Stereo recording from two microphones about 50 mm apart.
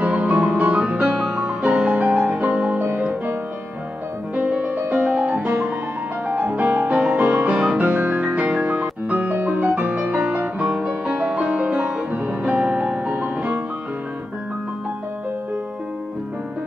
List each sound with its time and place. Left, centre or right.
0.0 s music: right
4.4 s music: right
9.8 s music: right
13.1 s music: right